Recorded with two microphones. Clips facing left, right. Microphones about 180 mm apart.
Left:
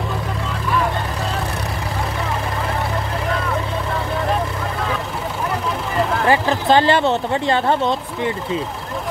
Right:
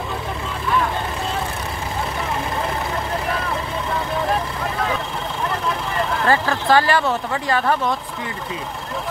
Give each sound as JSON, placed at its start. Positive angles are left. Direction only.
{"t": 6.2, "sound": "speech", "side_deg": 15}